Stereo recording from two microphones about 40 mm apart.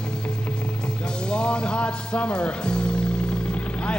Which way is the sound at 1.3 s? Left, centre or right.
Left.